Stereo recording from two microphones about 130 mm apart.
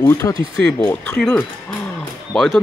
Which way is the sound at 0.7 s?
15° left (ahead or behind).